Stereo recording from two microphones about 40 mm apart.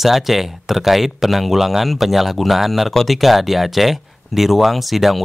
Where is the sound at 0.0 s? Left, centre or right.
Centre.